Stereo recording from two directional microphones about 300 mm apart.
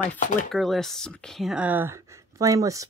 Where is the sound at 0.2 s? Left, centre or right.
Left.